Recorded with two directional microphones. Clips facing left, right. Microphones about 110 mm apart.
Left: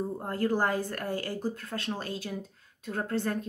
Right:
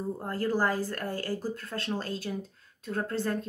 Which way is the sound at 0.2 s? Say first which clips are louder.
Even; 20° left (ahead or behind).